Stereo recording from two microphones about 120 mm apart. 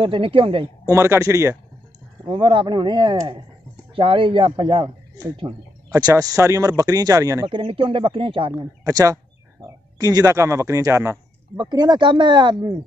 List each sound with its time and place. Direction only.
0.0 s speech: 45° right (ahead or behind)
0.8 s speech: 25° right (ahead or behind)
2.2 s speech: 45° right (ahead or behind)
3.9 s a man's voice: 45° right (ahead or behind)
5.9 s speech: 30° right (ahead or behind)
7.4 s speech: 45° right (ahead or behind)
8.5 s speech: 30° right (ahead or behind)
11.5 s speech: 40° right (ahead or behind)